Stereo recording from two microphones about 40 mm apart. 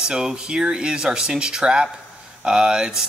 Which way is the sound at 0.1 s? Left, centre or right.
Centre.